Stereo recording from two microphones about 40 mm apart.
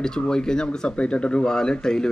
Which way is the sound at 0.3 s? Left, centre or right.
Centre.